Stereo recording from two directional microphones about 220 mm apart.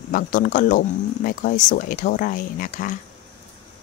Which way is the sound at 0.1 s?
40° left (ahead or behind).